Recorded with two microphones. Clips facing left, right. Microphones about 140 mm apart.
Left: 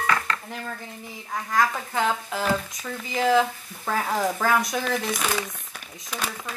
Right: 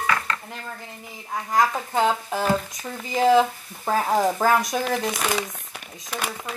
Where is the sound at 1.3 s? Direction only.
20° right (ahead or behind).